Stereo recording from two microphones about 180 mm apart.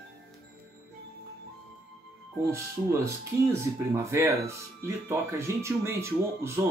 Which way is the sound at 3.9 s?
15° right (ahead or behind).